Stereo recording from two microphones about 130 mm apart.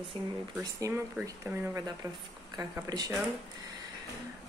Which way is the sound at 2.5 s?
25° right (ahead or behind).